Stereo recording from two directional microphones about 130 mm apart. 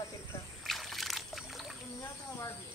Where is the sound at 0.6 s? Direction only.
Centre (ahead or behind).